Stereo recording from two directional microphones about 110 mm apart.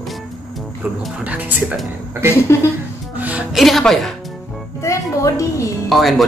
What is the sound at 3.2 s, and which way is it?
Music, 15° right (ahead or behind).